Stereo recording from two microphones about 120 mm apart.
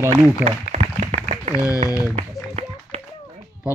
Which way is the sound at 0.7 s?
80° right.